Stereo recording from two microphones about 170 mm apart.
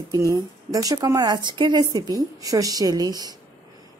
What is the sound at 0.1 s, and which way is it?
A woman's voice, 20° right (ahead or behind).